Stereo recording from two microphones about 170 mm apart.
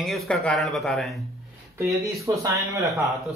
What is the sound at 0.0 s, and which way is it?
Speech, centre (ahead or behind).